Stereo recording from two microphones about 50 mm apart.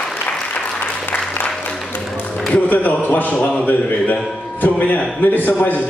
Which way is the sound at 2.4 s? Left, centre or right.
Left.